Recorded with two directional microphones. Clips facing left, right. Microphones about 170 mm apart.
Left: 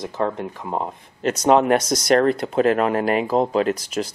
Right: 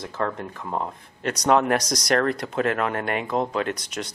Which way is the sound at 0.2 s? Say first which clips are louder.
Left 4 dB; 20° left (ahead or behind).